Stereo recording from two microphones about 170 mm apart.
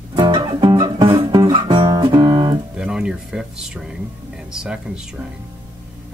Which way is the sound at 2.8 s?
5° right (ahead or behind).